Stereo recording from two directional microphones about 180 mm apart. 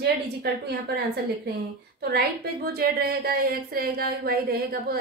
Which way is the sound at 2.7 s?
55° right (ahead or behind).